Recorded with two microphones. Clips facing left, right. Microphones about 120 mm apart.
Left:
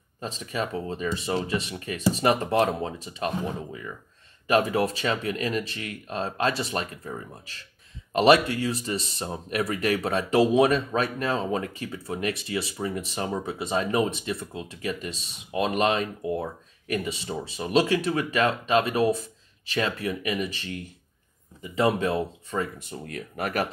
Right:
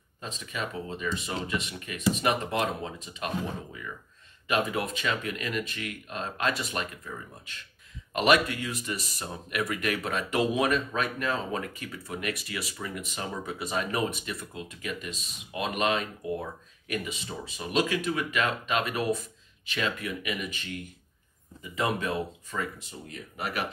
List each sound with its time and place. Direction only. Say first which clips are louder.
0.2 s speech: left 5 dB; 35° left (ahead or behind)
4.5 s speech: left 6 dB; 40° left (ahead or behind)
21.7 s speech: left 5 dB; 30° left (ahead or behind)
22.8 s speech: left 6 dB; 60° left (ahead or behind)